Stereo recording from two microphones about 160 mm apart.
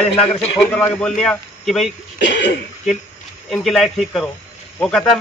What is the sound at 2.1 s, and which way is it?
Cough, 90° left.